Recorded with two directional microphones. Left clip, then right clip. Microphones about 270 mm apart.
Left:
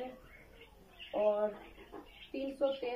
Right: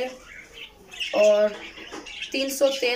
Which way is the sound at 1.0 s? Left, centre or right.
Centre.